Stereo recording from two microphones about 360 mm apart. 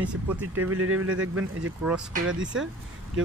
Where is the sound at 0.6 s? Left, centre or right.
Right.